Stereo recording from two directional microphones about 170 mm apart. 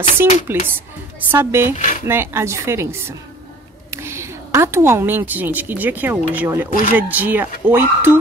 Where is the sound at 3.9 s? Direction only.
15° right (ahead or behind).